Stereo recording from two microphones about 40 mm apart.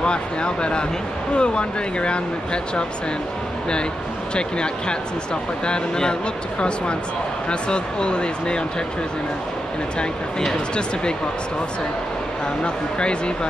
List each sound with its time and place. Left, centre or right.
0.0 s speech: left
4.4 s speech: left
7.4 s speech: left
12.6 s speech: left